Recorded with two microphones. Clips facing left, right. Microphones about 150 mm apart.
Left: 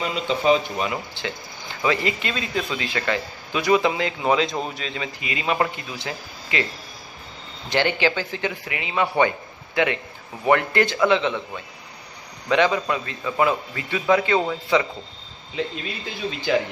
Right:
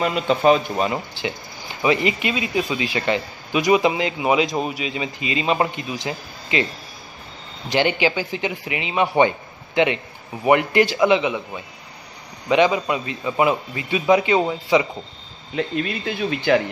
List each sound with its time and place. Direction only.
0.0 s speech: 55° right (ahead or behind)
1.2 s speech: 15° right (ahead or behind)
7.7 s a man's voice: 15° right (ahead or behind)
15.5 s speech: 60° right (ahead or behind)